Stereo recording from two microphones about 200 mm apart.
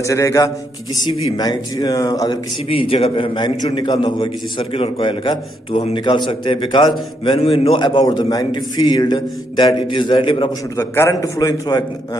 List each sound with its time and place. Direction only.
0.0 s a man's voice: 15° left (ahead or behind)
10.8 s a man's voice: 15° left (ahead or behind)